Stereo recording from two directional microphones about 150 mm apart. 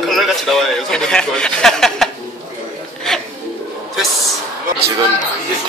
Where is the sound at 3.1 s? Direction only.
5° left (ahead or behind).